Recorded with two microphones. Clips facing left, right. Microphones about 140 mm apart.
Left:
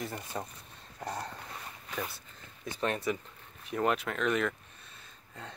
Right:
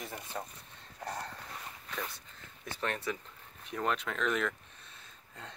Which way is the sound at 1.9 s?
5° left (ahead or behind).